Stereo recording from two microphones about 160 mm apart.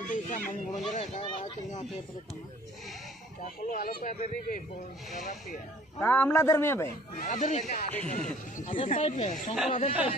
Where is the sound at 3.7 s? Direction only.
65° left (ahead or behind).